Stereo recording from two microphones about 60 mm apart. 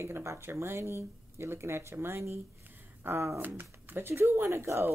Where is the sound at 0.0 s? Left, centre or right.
Right.